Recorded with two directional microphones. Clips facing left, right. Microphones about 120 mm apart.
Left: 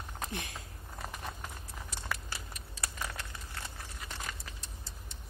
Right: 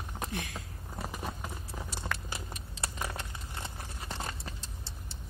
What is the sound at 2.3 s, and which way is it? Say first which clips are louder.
Crumpling: right 3 dB; 25° right (ahead or behind).